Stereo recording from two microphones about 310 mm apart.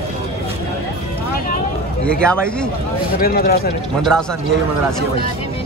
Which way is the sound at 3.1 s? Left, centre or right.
Left.